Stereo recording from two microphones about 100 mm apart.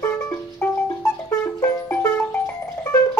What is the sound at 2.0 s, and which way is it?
Music, 15° left (ahead or behind).